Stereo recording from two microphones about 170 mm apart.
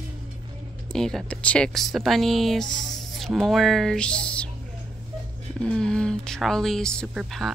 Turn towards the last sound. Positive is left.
turn(degrees=-5)  # may be behind; listen again after turning